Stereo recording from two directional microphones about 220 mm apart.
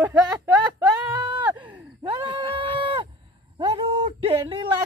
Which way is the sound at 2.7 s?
20° right (ahead or behind).